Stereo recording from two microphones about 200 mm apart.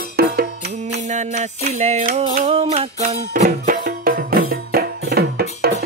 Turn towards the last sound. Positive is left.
turn(degrees=-50)  # may be behind; listen again after turning